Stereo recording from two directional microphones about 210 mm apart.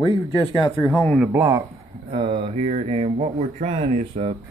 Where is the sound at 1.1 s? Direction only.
10° right (ahead or behind).